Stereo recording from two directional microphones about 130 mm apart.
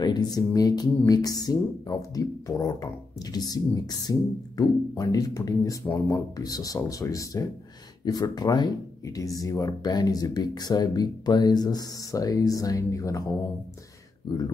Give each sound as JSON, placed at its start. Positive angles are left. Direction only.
{"t": 0.0, "sound": "speech", "side_deg": 30}